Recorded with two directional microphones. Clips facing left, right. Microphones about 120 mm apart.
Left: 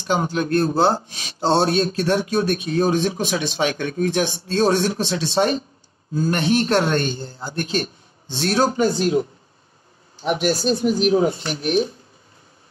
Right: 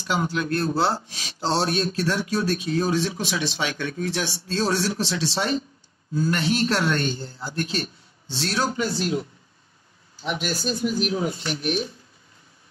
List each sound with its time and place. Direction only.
0.1 s speech: 40° left (ahead or behind)
1.5 s a man's voice: 25° left (ahead or behind)
1.9 s speech: 55° left (ahead or behind)
6.9 s a man's voice: 30° left (ahead or behind)
7.6 s a man's voice: 50° left (ahead or behind)
10.2 s speech: 45° left (ahead or behind)